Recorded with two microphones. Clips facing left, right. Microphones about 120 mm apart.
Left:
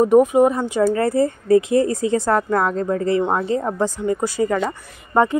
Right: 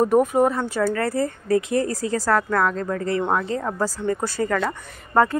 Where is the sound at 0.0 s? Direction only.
15° left (ahead or behind).